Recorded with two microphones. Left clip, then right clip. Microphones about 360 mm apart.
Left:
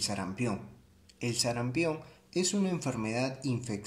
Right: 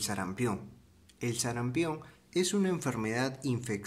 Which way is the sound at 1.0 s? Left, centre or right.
Right.